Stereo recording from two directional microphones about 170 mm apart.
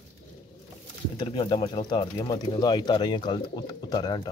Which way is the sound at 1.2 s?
30° left (ahead or behind).